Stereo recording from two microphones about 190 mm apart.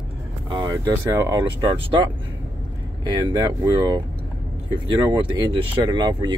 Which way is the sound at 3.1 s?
20° right (ahead or behind).